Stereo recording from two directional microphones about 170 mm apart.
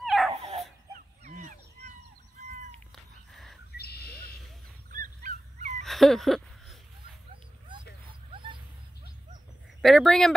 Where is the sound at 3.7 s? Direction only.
70° left (ahead or behind).